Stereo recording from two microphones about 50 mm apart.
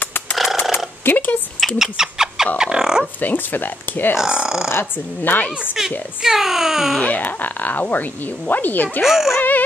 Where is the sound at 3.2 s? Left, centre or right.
Left.